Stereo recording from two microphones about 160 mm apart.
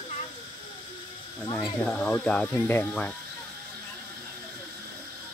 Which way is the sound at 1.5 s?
25° left (ahead or behind).